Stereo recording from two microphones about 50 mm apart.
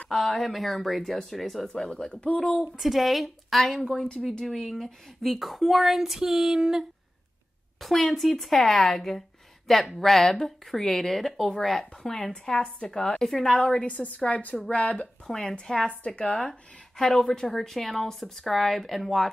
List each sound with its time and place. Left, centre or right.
0.1 s speech: centre; by 2.4 s left
2.8 s speech: centre
7.8 s speech: centre
13.5 s a woman's voice: left
15.2 s a woman's voice: centre
16.4 s speech: centre